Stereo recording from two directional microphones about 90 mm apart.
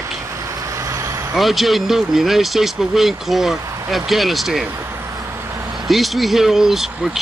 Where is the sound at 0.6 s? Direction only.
35° right (ahead or behind).